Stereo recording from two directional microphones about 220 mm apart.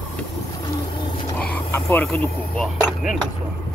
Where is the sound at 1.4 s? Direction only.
10° left (ahead or behind).